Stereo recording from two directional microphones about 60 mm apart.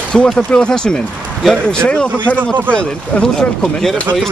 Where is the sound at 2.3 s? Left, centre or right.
Right.